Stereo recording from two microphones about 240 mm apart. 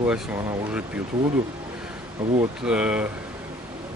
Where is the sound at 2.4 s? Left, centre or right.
Centre.